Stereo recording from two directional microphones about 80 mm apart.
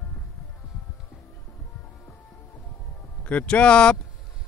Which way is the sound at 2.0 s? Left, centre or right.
Left.